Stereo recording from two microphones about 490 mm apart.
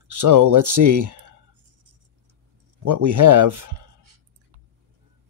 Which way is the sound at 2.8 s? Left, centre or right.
Right.